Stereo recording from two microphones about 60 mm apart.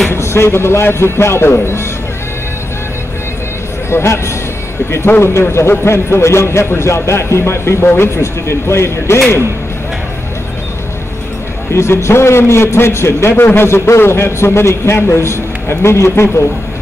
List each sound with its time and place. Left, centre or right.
0.1 s a man's voice: left
3.9 s a man's voice: left
5.5 s a man's voice: left
11.7 s a man's voice: left